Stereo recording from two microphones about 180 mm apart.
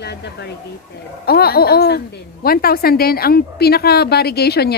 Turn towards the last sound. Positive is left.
turn(degrees=65)  # may be behind; listen again after turning